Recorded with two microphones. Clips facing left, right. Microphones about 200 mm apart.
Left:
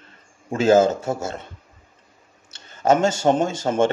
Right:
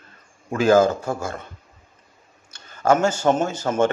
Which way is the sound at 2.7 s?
20° left (ahead or behind).